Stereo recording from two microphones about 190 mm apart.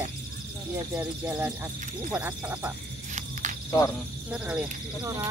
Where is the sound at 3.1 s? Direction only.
40° right (ahead or behind).